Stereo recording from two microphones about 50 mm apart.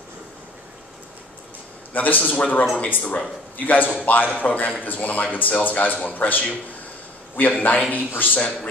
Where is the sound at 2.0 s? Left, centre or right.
Left.